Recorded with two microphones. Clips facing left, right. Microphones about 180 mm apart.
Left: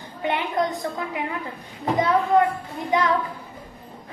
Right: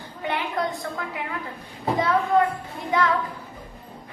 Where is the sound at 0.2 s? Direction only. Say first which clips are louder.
Left 3 dB; 20° left (ahead or behind).